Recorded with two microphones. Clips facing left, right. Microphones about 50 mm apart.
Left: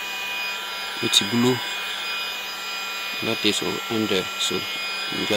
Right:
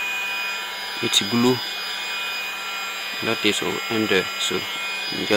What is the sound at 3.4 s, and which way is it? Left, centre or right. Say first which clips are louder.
Speech: right 2 dB; right.